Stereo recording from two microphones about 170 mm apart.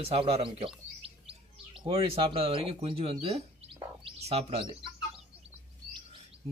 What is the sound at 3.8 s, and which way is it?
Bird, 35° right (ahead or behind).